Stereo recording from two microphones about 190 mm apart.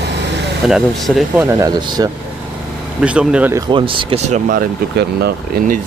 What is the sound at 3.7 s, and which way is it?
Speech, 25° right (ahead or behind).